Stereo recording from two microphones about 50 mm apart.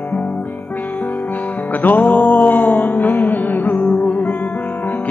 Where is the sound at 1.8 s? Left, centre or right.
Left.